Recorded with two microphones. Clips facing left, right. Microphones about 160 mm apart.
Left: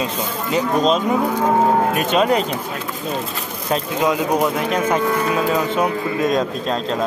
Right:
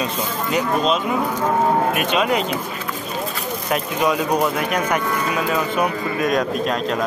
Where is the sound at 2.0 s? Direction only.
40° left (ahead or behind).